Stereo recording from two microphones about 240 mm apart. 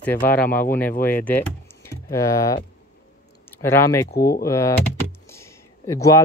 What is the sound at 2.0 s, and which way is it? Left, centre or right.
Speech, centre.